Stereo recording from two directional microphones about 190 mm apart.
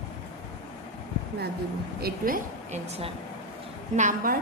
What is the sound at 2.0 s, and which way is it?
A woman's voice, 45° right (ahead or behind).